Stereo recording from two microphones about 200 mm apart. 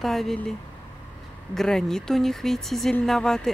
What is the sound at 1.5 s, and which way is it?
Speech, centre (ahead or behind).